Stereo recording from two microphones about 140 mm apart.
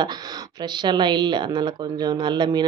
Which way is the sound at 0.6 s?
30° right (ahead or behind).